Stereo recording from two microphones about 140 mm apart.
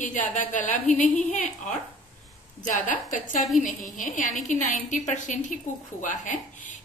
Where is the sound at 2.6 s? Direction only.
65° left (ahead or behind).